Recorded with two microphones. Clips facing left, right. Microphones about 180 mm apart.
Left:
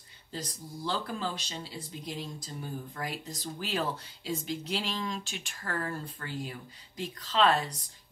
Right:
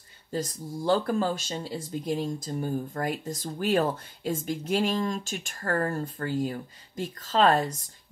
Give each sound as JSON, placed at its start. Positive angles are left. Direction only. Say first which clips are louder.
{"t": 0.3, "sound": "speech", "louder": "right 8 dB", "side_deg": -45}